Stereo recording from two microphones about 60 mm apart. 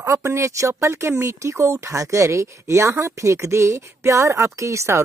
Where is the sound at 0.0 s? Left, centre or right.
Right.